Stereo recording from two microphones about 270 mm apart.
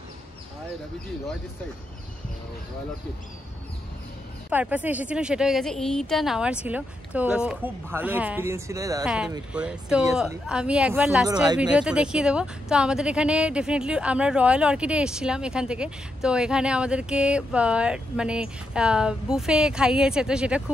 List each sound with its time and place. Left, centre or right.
4.5 s speech: centre